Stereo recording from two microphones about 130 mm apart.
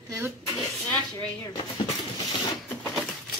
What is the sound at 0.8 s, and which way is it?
Rub, 10° left (ahead or behind).